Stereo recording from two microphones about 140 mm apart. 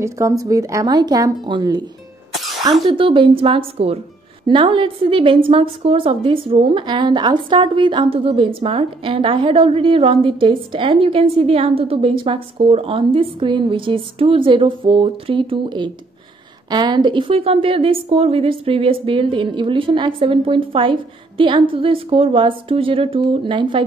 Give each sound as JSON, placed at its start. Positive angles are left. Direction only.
{"t": 0.0, "sound": "speech", "side_deg": -20}
{"t": 2.9, "sound": "a woman's voice", "side_deg": -40}